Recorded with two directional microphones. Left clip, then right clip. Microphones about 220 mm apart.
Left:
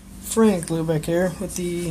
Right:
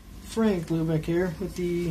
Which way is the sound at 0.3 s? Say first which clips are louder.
Left 7 dB; 45° left (ahead or behind).